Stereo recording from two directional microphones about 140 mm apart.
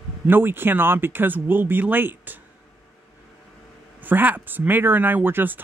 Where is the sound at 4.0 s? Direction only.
15° right (ahead or behind).